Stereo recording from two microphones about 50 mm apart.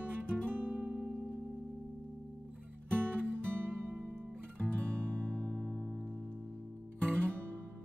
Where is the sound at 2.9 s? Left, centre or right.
Right.